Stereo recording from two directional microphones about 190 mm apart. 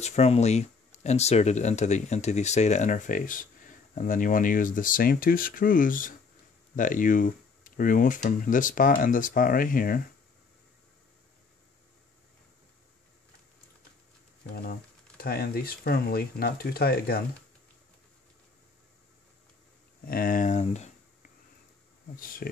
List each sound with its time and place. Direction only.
0.0 s speech: 35° left (ahead or behind)
14.5 s speech: 50° left (ahead or behind)
20.1 s speech: 50° left (ahead or behind)
22.1 s speech: 45° left (ahead or behind)